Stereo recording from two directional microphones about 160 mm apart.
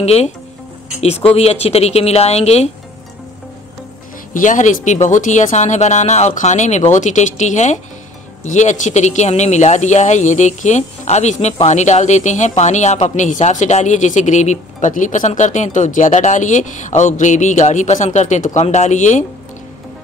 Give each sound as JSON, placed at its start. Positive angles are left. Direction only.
{"t": 0.0, "sound": "speech", "side_deg": 40}
{"t": 1.3, "sound": "speech", "side_deg": 40}
{"t": 4.3, "sound": "speech", "side_deg": 50}